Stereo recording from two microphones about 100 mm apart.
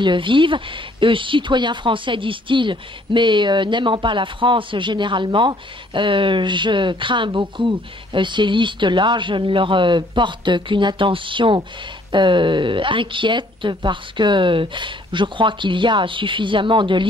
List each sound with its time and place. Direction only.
0.0 s speech: 55° right (ahead or behind)